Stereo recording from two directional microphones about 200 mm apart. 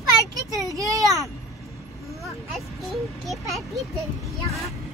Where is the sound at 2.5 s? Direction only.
Centre (ahead or behind).